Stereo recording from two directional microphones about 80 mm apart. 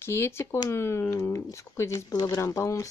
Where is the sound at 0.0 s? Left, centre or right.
Left.